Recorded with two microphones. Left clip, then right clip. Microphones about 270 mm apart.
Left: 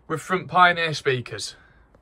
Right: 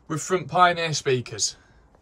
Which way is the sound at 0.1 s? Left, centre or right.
Centre.